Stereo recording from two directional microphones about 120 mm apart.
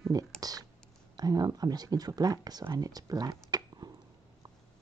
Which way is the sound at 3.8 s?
35° right (ahead or behind).